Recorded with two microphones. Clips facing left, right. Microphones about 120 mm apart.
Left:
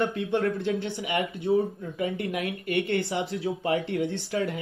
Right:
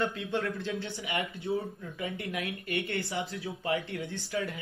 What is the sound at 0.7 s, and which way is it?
Speech, 60° left (ahead or behind).